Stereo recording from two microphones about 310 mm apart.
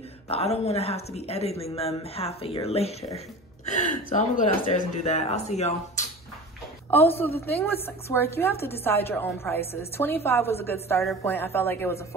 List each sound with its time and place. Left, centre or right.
0.3 s speech: centre
6.9 s a woman's voice: centre